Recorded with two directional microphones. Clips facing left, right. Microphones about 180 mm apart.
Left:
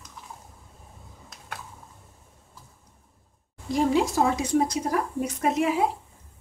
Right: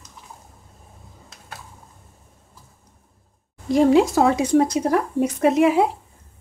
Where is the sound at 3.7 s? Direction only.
80° right.